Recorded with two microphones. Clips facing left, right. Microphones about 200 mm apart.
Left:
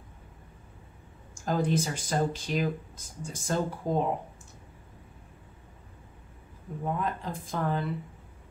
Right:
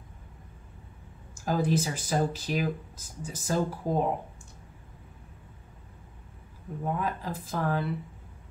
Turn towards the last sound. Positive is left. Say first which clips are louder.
# right 1 dB
turn(degrees=-5)  # may be behind; listen again after turning